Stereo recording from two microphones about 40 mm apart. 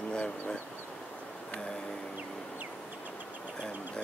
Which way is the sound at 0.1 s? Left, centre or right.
Left.